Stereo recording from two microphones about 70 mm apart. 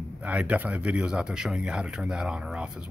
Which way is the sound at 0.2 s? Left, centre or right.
Centre.